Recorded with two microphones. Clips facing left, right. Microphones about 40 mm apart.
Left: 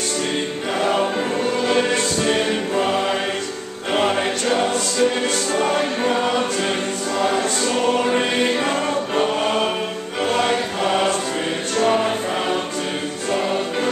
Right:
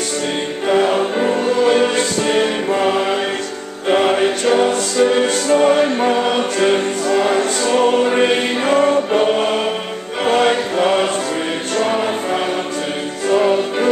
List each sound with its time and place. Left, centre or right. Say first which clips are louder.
0.7 s choir: right 5 dB; centre
4.2 s choir: right 5 dB; centre
10.2 s choir: right 5 dB; right
11.7 s music: even; centre
13.3 s music: right 7 dB; centre